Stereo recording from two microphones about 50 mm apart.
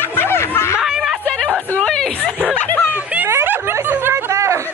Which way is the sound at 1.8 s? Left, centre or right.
Centre.